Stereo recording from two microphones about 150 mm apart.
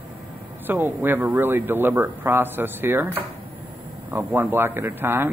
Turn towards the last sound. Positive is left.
turn(degrees=-15)  # may be behind; listen again after turning